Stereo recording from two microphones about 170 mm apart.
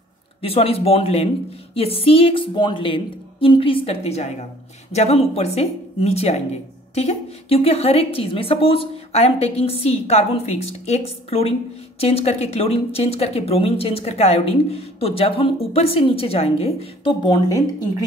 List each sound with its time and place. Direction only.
0.4 s speech: 35° left (ahead or behind)